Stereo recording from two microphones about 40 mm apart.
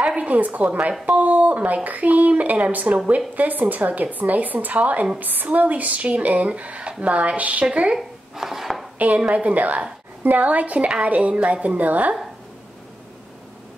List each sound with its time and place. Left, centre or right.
0.0 s a woman's voice: right
7.9 s a sound: centre
8.9 s speech: right